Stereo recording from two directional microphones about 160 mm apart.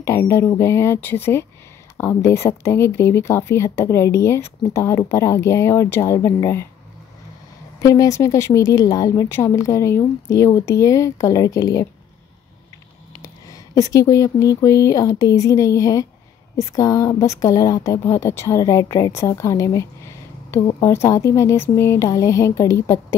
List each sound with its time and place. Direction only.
0.0 s speech: 15° left (ahead or behind)
7.8 s speech: 20° left (ahead or behind)
13.2 s speech: 20° left (ahead or behind)